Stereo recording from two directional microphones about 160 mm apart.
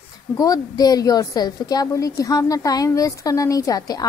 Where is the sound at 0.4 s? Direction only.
25° left (ahead or behind).